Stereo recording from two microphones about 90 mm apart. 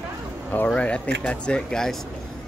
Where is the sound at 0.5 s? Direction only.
15° left (ahead or behind).